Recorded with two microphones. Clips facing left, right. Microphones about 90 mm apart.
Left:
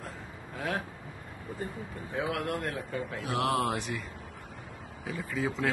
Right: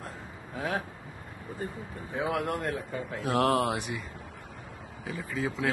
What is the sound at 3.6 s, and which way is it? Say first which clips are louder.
Speech: right 1 dB; 10° right (ahead or behind).